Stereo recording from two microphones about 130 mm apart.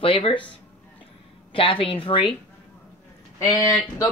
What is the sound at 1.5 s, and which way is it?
Speech, 40° left (ahead or behind).